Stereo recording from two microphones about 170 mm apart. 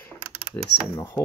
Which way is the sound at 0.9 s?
15° left (ahead or behind).